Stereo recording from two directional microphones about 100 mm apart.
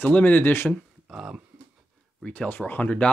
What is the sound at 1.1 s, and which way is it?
Speech, 5° right (ahead or behind).